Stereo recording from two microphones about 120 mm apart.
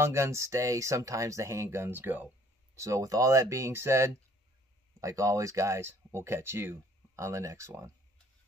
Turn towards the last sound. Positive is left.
turn(degrees=-25)  # may be behind; listen again after turning